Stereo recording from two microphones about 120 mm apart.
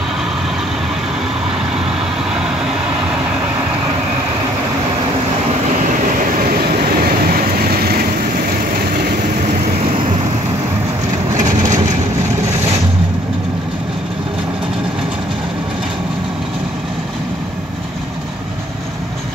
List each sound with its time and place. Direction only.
11.3 s vehicle: 30° right (ahead or behind)